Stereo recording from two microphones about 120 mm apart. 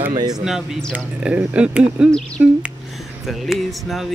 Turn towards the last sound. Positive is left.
turn(degrees=0)  # may be behind; listen again after turning